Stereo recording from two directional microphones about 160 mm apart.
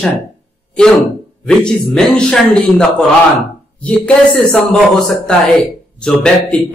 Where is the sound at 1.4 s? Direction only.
5° left (ahead or behind).